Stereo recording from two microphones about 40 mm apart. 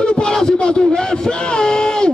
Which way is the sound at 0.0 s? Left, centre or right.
Left.